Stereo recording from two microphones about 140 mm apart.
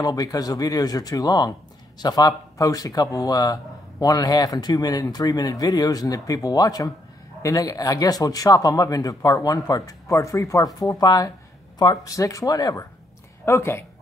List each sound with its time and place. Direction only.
0.0 s speech: 25° left (ahead or behind)